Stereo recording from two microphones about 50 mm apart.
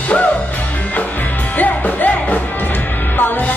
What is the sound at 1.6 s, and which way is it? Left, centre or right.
Music, left.